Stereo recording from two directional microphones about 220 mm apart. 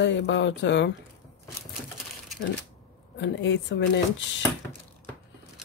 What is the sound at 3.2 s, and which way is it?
Speech, 55° left (ahead or behind).